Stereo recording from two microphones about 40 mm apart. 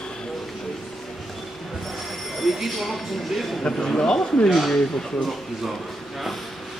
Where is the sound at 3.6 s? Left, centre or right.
Left.